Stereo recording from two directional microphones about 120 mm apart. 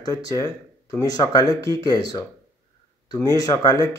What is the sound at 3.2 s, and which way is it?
Speech, 30° left (ahead or behind).